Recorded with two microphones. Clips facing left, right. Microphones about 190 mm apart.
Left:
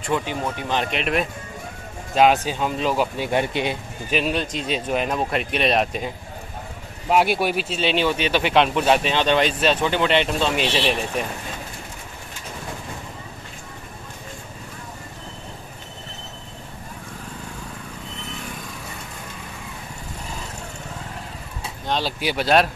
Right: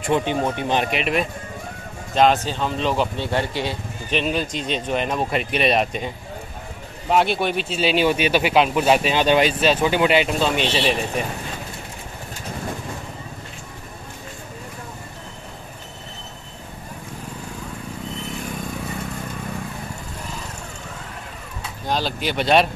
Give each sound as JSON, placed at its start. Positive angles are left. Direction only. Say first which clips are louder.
{"t": 0.1, "sound": "speech", "louder": "right 4 dB", "side_deg": -25}
{"t": 0.8, "sound": "speech", "louder": "right 1 dB", "side_deg": -5}
{"t": 2.1, "sound": "speech", "louder": "even", "side_deg": 10}
{"t": 3.3, "sound": "speech", "louder": "left 1 dB", "side_deg": 15}
{"t": 4.1, "sound": "speech", "louder": "even", "side_deg": 0}
{"t": 21.8, "sound": "vehicle", "louder": "right 1 dB", "side_deg": -5}
{"t": 22.2, "sound": "speech", "louder": "right 1 dB", "side_deg": 5}